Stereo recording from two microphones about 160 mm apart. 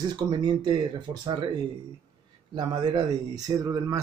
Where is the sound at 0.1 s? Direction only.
25° right (ahead or behind).